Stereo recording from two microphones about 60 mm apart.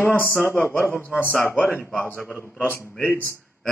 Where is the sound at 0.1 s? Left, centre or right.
Left.